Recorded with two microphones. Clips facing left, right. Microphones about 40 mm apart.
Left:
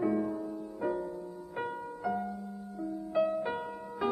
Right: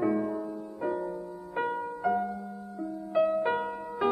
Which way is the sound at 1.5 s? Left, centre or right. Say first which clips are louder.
Right 7 dB; centre.